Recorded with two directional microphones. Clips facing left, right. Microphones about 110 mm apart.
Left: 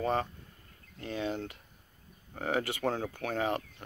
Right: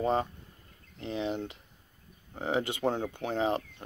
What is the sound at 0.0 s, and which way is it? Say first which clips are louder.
Speech: right 2 dB; 20° right (ahead or behind).